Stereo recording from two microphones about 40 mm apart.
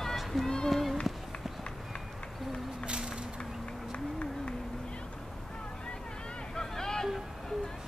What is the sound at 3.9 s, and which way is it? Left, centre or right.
Run, left.